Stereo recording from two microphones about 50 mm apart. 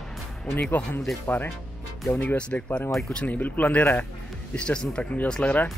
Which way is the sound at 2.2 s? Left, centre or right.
Left.